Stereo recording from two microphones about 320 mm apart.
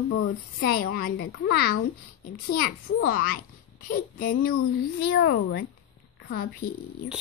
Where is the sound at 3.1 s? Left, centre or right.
Left.